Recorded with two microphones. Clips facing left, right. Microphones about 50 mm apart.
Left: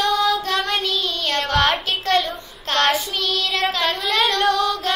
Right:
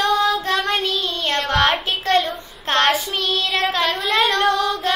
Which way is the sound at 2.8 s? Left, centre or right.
Centre.